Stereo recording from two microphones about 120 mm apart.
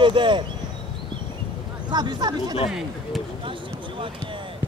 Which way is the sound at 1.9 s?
35° right (ahead or behind).